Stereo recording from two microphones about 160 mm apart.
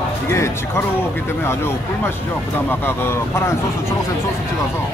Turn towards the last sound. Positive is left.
turn(degrees=15)  # may be behind; listen again after turning